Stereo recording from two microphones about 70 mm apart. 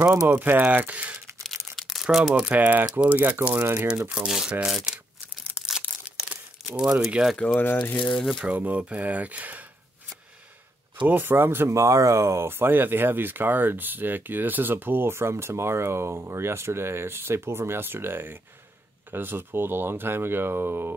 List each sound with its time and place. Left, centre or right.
0.3 s speech: right
1.8 s crumpling: centre
2.0 s speech: centre
2.4 s speech: right
4.3 s speech: centre
5.7 s a sound: centre
6.8 s speech: centre
7.3 s speech: centre
8.4 s speech: right
11.1 s speech: right
11.8 s speech: right